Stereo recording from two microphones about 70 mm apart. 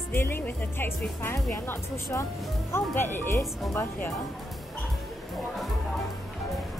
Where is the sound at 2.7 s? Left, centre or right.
Left.